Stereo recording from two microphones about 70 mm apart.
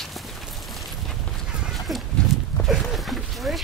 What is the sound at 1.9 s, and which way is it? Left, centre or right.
Livestock, centre.